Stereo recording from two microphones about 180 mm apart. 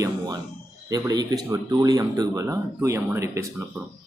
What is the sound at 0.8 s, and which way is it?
Speech, 20° right (ahead or behind).